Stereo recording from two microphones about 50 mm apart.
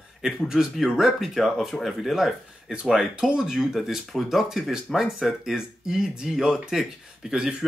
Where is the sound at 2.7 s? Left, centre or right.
Centre.